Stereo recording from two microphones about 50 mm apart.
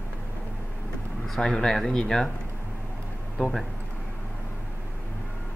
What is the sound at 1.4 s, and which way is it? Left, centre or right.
Speech, centre.